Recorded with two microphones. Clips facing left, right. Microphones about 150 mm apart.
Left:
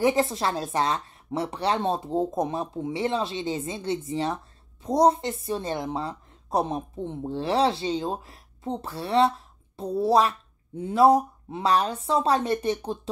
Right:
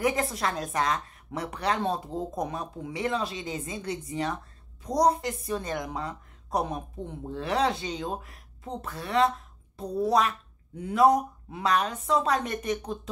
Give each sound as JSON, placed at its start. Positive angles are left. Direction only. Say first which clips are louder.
{"t": 0.0, "sound": "a woman's voice", "louder": "left 4 dB", "side_deg": 30}